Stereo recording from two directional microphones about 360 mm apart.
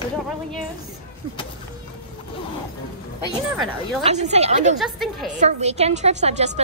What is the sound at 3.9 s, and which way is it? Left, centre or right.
Speech, centre.